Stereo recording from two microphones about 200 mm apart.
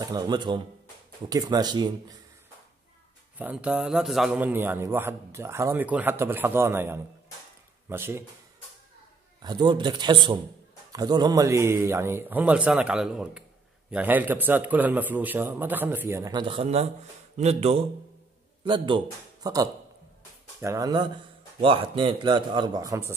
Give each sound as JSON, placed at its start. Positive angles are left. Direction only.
{"t": 0.0, "sound": "a man's voice", "side_deg": -20}
{"t": 3.3, "sound": "a man's voice", "side_deg": -5}
{"t": 9.4, "sound": "a man's voice", "side_deg": -20}